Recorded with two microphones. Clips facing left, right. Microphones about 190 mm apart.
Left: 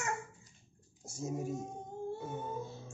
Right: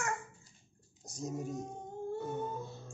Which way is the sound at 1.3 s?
5° left (ahead or behind).